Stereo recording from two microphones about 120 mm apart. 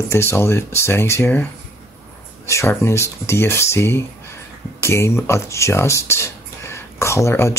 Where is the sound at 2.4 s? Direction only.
25° left (ahead or behind).